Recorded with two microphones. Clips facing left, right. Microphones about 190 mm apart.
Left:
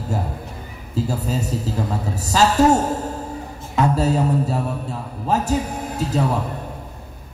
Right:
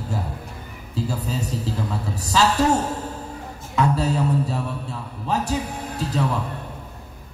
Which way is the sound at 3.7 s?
40° left (ahead or behind).